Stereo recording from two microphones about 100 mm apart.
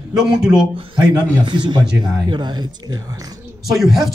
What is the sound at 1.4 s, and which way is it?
A woman's voice, 50° right (ahead or behind).